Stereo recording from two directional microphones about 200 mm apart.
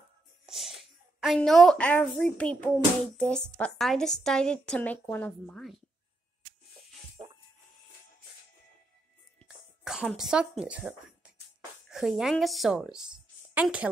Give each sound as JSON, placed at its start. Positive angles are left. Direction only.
{"t": 0.5, "sound": "a woman's voice", "side_deg": 0}
{"t": 7.2, "sound": "music", "side_deg": -25}
{"t": 9.4, "sound": "a sound", "side_deg": -5}
{"t": 11.9, "sound": "a woman's voice", "side_deg": 0}